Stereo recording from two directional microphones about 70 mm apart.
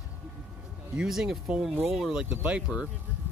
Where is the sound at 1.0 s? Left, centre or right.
Centre.